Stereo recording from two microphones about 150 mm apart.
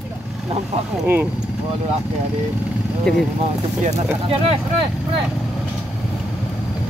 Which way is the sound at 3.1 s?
5° left (ahead or behind).